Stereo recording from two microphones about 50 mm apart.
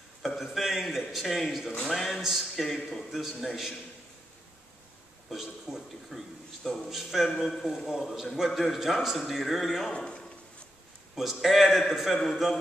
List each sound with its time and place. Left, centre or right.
0.4 s a man's voice: centre
5.3 s a sound: centre
6.9 s speech: centre
7.3 s a man's voice: centre
9.9 s a sound: centre
11.1 s a man's voice: centre